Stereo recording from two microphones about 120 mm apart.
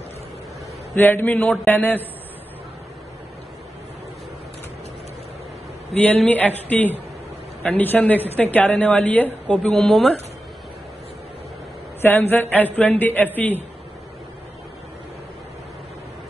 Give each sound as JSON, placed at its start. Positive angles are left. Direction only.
{"t": 0.9, "sound": "a woman's voice", "side_deg": 15}
{"t": 6.2, "sound": "a woman's voice", "side_deg": 10}
{"t": 12.0, "sound": "a woman's voice", "side_deg": 20}